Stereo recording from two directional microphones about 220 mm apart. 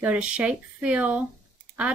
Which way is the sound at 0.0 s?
5° right (ahead or behind).